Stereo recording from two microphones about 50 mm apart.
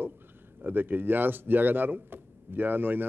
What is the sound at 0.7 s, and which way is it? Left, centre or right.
Speech, right.